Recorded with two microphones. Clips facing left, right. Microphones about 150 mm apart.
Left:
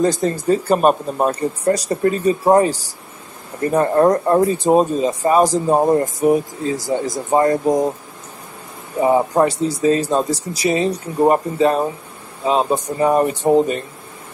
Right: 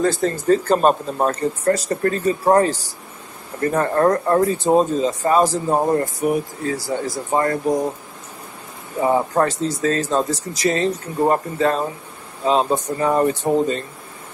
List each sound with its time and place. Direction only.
0.0 s speech: 15° left (ahead or behind)
9.0 s speech: 15° left (ahead or behind)